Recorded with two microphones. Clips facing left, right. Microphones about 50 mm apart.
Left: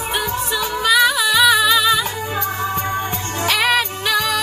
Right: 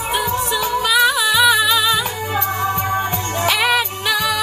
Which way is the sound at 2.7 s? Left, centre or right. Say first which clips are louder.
Right 2 dB; right.